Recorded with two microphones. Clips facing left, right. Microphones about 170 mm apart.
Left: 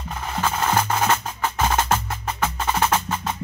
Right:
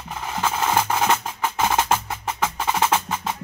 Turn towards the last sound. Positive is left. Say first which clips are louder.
# even
turn(degrees=-10)  # may be behind; listen again after turning